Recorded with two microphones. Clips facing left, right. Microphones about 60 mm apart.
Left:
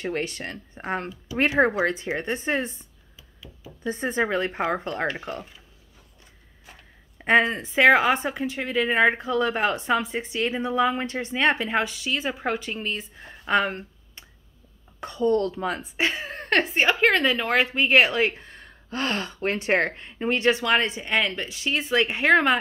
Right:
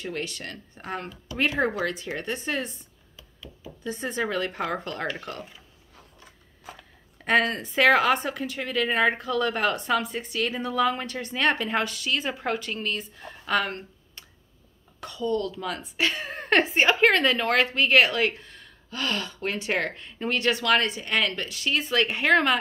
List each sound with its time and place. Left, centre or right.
0.0 s speech: left
3.8 s speech: left
5.1 s a woman's voice: centre
7.2 s a sound: left
7.4 s a woman's voice: centre
15.0 s speech: left
16.3 s a woman's voice: centre